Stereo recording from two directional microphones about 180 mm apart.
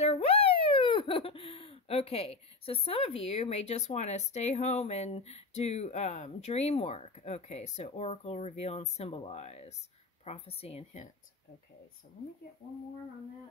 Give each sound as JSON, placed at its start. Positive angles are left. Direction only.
{"t": 0.0, "sound": "a child's voice", "side_deg": 35}